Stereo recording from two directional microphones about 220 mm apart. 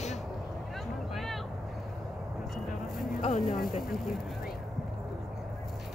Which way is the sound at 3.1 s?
35° left (ahead or behind).